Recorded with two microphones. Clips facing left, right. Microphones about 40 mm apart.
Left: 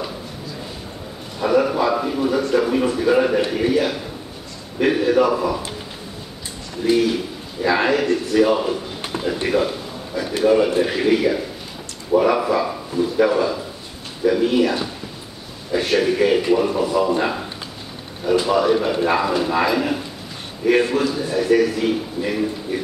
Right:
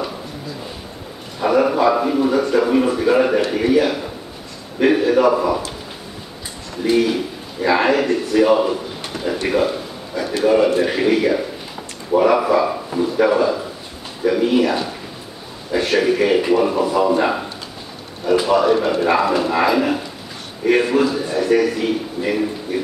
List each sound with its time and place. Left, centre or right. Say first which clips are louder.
1.4 s a man's voice: right 2 dB; centre
6.8 s a man's voice: right 1 dB; centre
9.1 s a sound: left 1 dB; left
10.4 s a man's voice: right 1 dB; centre
18.2 s speech: right 2 dB; centre